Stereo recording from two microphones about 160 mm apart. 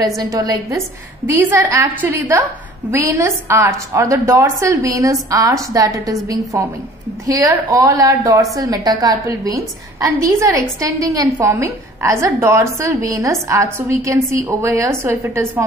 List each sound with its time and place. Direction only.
0.2 s a woman's voice: 25° right (ahead or behind)